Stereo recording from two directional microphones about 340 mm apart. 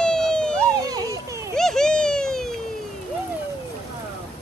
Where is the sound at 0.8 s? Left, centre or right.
Centre.